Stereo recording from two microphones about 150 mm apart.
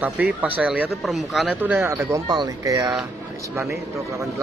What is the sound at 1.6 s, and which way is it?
Speech, 15° right (ahead or behind).